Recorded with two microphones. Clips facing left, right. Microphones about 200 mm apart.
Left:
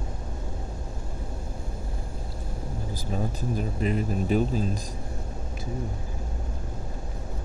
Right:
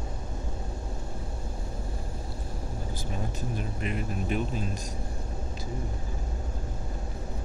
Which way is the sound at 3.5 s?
35° left (ahead or behind).